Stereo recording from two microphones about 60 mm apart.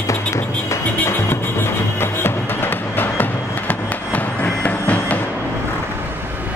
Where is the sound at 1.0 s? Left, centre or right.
Left.